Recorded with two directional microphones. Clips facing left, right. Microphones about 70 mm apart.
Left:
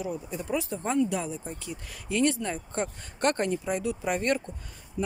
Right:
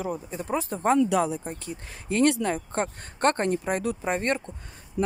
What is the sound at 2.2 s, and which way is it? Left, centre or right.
Speech, right.